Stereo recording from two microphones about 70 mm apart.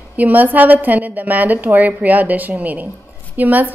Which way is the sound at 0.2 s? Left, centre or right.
Right.